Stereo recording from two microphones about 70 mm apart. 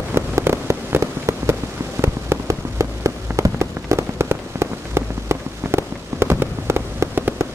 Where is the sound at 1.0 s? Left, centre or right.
Right.